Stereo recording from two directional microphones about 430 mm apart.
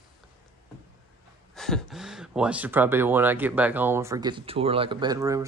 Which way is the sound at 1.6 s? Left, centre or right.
Centre.